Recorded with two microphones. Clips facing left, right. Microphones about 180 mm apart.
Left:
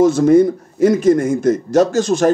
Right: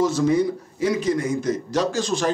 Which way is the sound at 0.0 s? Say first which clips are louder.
Left 9 dB; 50° left (ahead or behind).